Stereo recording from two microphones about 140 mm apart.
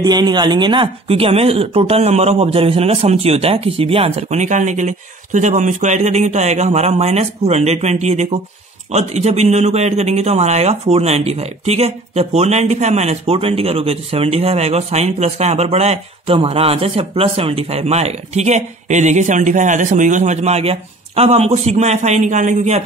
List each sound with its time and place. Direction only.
0.0 s speech: 30° right (ahead or behind); by 22.8 s 60° right (ahead or behind)